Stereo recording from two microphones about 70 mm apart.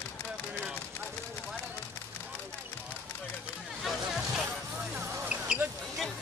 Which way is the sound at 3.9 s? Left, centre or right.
Centre.